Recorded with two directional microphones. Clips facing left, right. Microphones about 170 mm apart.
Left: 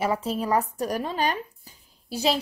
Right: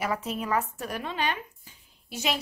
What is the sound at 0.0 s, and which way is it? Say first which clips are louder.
Speech: left 4 dB; 30° left (ahead or behind).